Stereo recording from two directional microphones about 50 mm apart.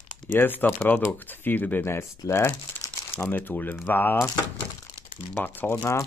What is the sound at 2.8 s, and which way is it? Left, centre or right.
Crumpling, left.